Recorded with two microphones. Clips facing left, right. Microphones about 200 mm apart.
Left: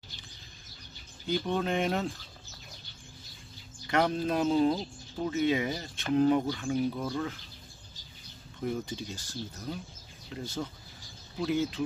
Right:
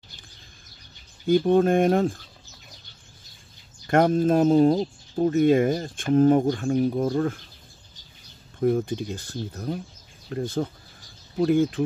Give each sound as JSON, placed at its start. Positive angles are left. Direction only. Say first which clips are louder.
{"t": 1.2, "sound": "speech", "louder": "right 12 dB", "side_deg": -50}
{"t": 3.8, "sound": "speech", "louder": "right 8 dB", "side_deg": -50}
{"t": 8.5, "sound": "speech", "louder": "right 11 dB", "side_deg": -50}